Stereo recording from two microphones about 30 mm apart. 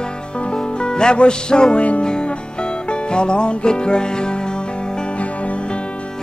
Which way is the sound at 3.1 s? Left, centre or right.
Left.